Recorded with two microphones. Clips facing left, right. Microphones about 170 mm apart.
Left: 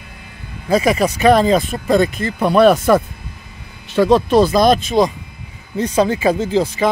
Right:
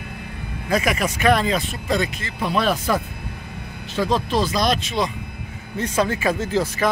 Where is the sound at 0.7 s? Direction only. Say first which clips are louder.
Left 7 dB; 30° left (ahead or behind).